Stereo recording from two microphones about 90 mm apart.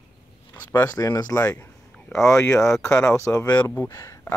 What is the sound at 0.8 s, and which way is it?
Speech, 40° left (ahead or behind).